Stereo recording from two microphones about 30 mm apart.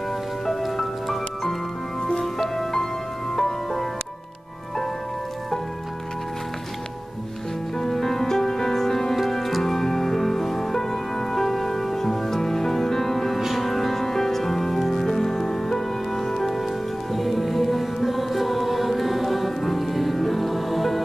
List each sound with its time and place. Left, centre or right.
0.5 s music: centre
2.0 s music: centre
7.7 s music: centre
9.3 s music: centre